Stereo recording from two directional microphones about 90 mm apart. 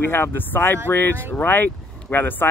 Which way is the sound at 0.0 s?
25° left (ahead or behind).